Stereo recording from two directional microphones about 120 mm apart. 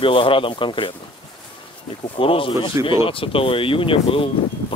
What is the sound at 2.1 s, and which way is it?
Speech, 45° left (ahead or behind).